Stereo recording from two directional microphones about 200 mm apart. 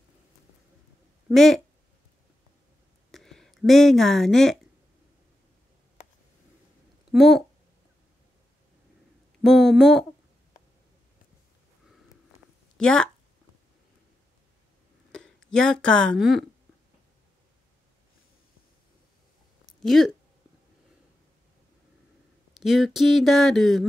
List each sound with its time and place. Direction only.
1.3 s speech: centre (ahead or behind)
3.1 s a sound: centre (ahead or behind)
7.1 s speech: centre (ahead or behind)
9.4 s speech: centre (ahead or behind)
12.7 s speech: 5° left (ahead or behind)
15.1 s speech: 5° left (ahead or behind)
19.8 s speech: centre (ahead or behind)
22.6 s speech: centre (ahead or behind)